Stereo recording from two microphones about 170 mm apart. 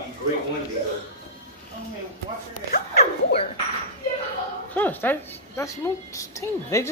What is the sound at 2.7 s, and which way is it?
Speech, 65° left (ahead or behind).